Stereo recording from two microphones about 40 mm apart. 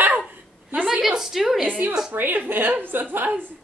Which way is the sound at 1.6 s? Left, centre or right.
Right.